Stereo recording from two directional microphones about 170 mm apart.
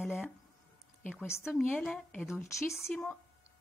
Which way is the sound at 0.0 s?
Centre (ahead or behind).